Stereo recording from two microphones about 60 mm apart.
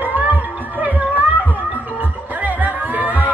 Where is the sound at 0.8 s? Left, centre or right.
Right.